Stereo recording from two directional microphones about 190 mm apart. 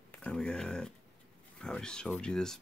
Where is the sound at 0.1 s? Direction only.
5° left (ahead or behind).